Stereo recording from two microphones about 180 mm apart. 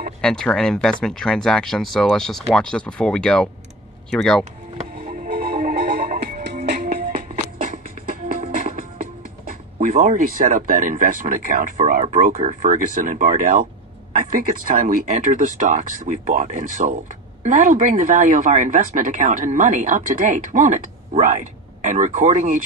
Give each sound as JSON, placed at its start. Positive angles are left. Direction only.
{"t": 0.2, "sound": "speech", "side_deg": 5}
{"t": 5.0, "sound": "music", "side_deg": -45}
{"t": 6.8, "sound": "music", "side_deg": -50}
{"t": 9.8, "sound": "speech", "side_deg": -45}